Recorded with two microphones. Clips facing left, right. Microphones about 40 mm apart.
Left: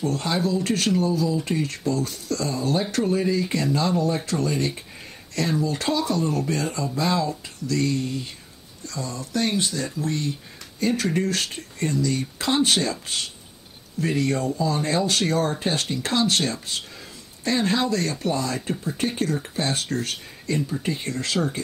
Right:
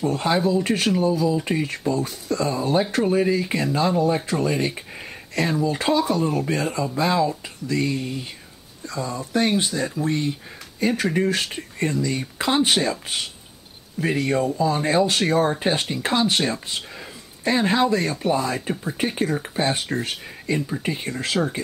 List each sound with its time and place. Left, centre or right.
0.0 s speech: centre